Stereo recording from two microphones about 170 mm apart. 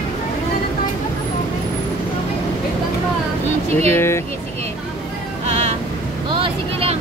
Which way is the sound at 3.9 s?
15° left (ahead or behind).